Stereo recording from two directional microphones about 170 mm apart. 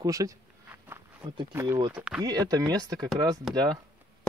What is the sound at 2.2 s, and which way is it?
Speech, 25° right (ahead or behind).